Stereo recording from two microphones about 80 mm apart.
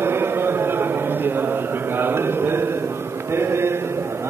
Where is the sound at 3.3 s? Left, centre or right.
Right.